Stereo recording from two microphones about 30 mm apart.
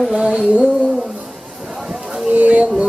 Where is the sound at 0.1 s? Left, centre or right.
Right.